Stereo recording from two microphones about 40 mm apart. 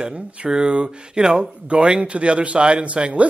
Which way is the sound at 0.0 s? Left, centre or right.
Right.